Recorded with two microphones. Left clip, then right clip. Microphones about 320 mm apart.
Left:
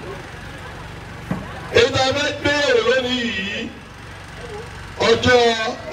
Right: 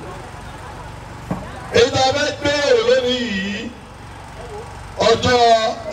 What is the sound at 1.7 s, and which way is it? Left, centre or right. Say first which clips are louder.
A man's voice: right 1 dB; right.